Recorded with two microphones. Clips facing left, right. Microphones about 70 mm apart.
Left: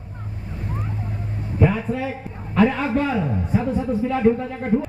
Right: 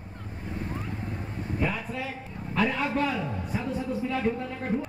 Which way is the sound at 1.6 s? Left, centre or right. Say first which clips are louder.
Left 11 dB; left.